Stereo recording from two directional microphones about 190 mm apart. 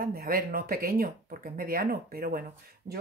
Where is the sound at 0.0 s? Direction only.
50° right (ahead or behind).